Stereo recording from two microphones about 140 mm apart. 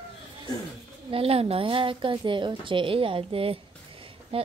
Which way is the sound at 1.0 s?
40° right (ahead or behind).